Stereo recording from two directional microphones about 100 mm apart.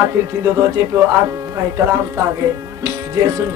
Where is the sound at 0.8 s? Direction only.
35° right (ahead or behind).